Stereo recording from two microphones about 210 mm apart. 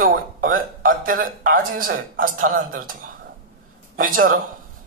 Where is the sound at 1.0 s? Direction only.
40° right (ahead or behind).